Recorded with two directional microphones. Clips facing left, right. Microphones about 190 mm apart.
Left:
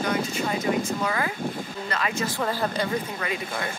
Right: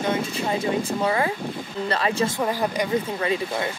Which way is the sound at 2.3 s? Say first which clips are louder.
Right 2 dB; 15° right (ahead or behind).